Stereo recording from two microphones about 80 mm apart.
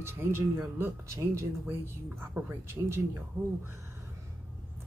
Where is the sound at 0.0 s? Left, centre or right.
Right.